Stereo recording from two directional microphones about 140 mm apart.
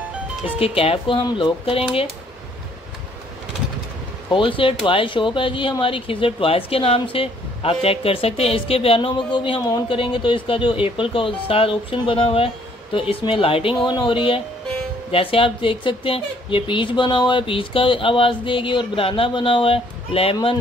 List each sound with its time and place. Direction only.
0.6 s speech: 45° left (ahead or behind)
4.3 s speech: 40° left (ahead or behind)